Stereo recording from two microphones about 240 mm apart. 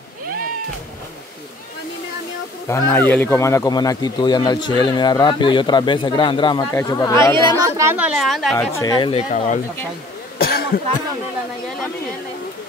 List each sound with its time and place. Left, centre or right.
2.7 s speech: centre
7.4 s speech: centre
8.7 s speech: centre
10.4 s cough: left